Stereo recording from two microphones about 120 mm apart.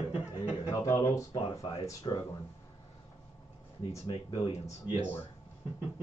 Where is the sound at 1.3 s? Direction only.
45° left (ahead or behind).